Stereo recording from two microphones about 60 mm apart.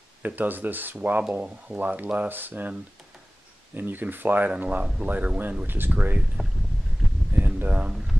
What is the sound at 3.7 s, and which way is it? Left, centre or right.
Speech, right.